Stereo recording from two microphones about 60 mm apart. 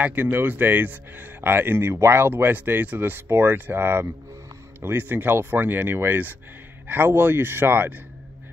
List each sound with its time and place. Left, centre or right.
0.0 s speech: right